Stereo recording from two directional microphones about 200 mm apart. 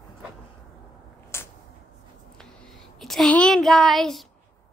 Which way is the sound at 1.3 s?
10° left (ahead or behind).